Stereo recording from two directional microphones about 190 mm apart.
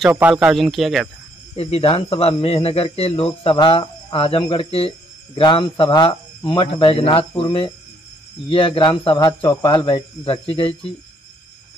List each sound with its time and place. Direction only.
0.1 s speech: 10° right (ahead or behind)
1.5 s speech: 30° left (ahead or behind)